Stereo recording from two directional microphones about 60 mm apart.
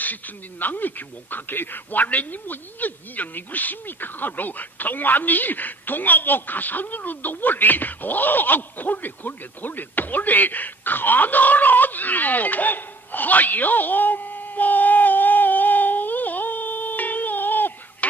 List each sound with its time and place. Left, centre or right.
0.0 s speech: left